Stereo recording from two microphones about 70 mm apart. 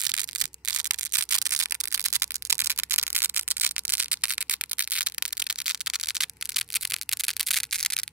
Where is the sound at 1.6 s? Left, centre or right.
Right.